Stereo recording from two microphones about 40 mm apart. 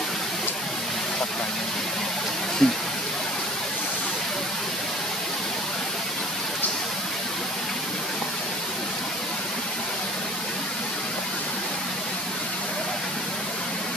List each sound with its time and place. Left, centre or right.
2.6 s speech: left